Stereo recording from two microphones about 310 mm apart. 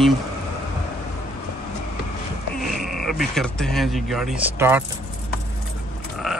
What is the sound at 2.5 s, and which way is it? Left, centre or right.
Speech, centre.